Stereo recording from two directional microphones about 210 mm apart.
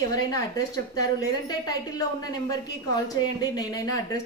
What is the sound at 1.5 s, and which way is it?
A woman's voice, 20° left (ahead or behind).